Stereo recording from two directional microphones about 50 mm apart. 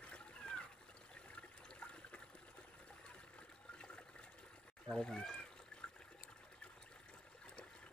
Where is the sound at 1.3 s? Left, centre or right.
Left.